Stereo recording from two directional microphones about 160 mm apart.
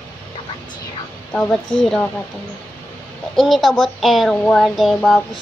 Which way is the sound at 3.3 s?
Centre (ahead or behind).